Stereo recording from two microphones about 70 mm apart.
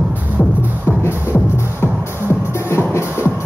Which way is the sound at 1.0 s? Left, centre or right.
Left.